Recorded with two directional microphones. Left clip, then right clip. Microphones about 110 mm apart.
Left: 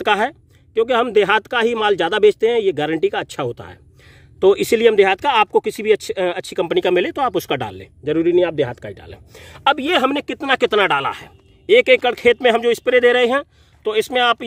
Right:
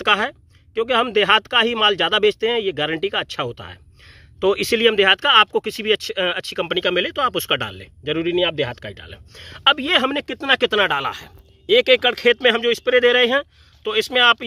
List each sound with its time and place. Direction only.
0.0 s speech: 35° left (ahead or behind)
4.4 s speech: 35° left (ahead or behind)
6.7 s speech: 50° left (ahead or behind)
8.0 s speech: 20° left (ahead or behind)
10.9 s speech: 10° left (ahead or behind); by 13.2 s 45° left (ahead or behind)
13.2 s speech: 30° left (ahead or behind)